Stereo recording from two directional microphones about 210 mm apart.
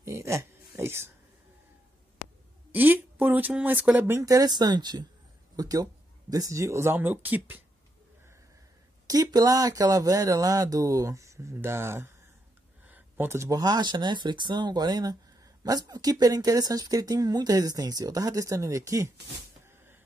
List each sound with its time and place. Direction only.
0.0 s a sound: 15° right (ahead or behind)
2.7 s speech: 10° right (ahead or behind)
9.0 s speech: 15° right (ahead or behind)